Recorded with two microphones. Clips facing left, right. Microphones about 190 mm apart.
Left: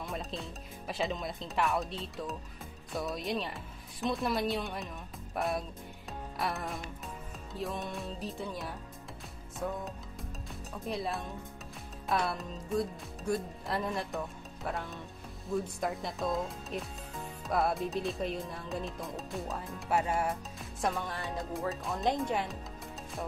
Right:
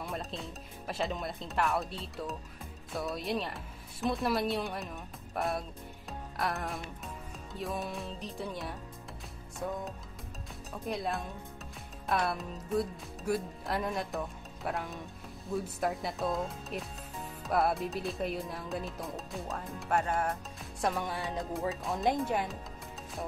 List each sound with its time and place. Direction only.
0.0 s speech: centre (ahead or behind)
5.3 s music: centre (ahead or behind)
7.5 s speech: centre (ahead or behind)
10.9 s speech: centre (ahead or behind)
21.0 s music: 15° right (ahead or behind)
21.4 s speech: centre (ahead or behind)